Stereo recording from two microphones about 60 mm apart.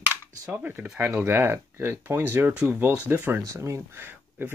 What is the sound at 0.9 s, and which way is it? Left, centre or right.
Speech, right.